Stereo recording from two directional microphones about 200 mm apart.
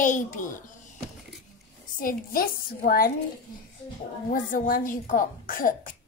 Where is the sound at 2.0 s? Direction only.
45° left (ahead or behind).